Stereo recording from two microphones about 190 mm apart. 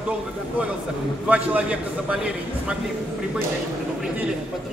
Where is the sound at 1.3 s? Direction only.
5° right (ahead or behind).